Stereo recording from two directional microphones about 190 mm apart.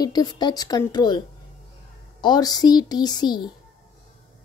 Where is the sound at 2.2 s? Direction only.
20° left (ahead or behind).